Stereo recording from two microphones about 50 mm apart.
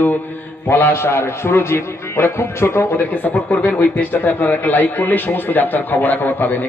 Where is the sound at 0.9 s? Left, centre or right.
Left.